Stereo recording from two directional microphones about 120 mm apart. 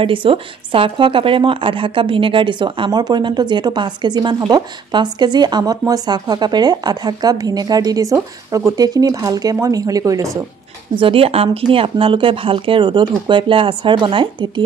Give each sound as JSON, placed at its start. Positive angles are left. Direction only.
{"t": 0.0, "sound": "a woman's voice", "side_deg": -45}
{"t": 11.0, "sound": "speech", "side_deg": -50}